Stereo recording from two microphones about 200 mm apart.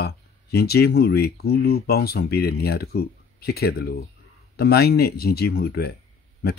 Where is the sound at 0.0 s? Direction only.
55° left (ahead or behind).